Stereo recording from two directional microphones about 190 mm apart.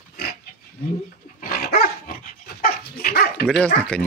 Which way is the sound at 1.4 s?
50° left (ahead or behind).